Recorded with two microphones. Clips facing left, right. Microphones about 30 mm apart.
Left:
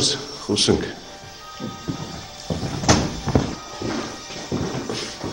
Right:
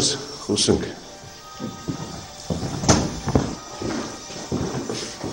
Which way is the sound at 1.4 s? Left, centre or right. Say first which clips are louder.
Left 1 dB; left.